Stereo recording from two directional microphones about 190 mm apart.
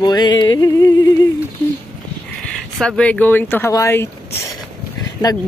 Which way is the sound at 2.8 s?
5° left (ahead or behind).